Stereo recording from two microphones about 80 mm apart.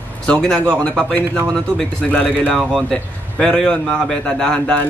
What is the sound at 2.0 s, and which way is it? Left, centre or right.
Speech, centre.